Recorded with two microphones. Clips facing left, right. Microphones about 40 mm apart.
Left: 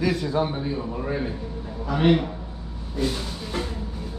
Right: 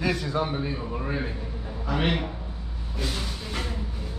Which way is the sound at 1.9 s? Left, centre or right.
Right.